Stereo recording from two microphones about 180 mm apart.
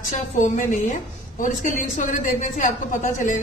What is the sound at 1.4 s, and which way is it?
A woman's voice, 45° left (ahead or behind).